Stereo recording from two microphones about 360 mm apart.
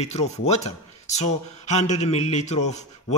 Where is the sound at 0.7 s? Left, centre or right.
Centre.